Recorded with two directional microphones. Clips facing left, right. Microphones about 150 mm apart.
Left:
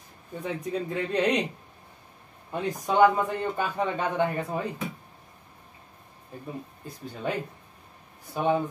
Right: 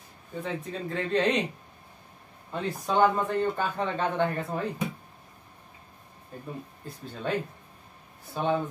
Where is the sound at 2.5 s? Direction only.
15° left (ahead or behind).